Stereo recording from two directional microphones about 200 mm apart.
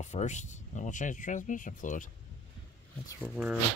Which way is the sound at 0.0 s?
35° left (ahead or behind).